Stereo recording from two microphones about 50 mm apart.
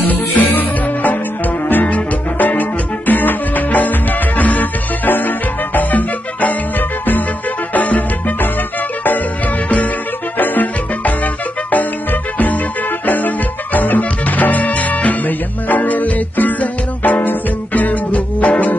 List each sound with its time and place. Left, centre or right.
0.0 s music: left
7.7 s music: left
10.3 s music: left